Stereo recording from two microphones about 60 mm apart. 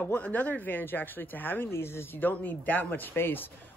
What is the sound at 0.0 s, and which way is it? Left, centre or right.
Speech, left.